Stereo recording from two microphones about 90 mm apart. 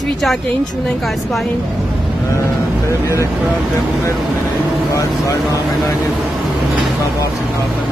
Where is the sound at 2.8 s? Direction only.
35° left (ahead or behind).